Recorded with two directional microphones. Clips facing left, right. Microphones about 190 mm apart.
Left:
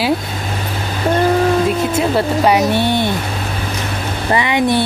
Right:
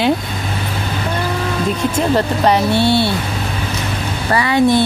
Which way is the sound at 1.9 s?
10° left (ahead or behind).